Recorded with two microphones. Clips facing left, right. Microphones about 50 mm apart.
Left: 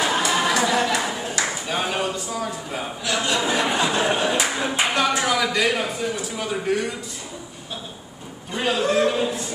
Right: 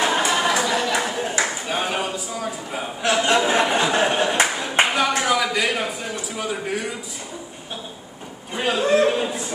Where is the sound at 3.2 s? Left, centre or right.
Right.